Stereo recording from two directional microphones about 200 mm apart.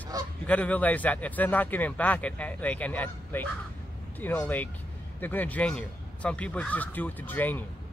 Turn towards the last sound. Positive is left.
turn(degrees=10)  # may be behind; listen again after turning